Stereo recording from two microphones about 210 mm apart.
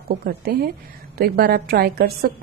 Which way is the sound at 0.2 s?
50° right (ahead or behind).